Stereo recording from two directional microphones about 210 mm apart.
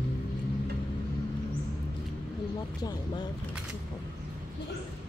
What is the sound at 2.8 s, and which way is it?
Speech, 20° left (ahead or behind).